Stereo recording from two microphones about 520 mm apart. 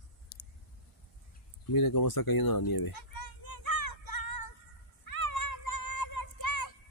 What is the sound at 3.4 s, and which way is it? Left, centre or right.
Music, left.